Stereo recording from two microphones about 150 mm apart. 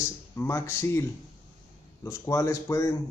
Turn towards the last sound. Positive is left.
turn(degrees=20)  # may be behind; listen again after turning